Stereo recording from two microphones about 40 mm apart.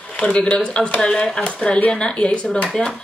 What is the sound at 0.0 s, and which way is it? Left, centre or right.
Speech, left.